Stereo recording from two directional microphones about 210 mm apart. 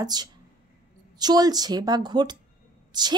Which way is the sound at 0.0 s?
20° right (ahead or behind).